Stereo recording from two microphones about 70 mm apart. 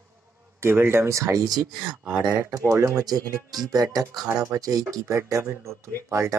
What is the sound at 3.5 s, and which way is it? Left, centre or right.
Speech, right.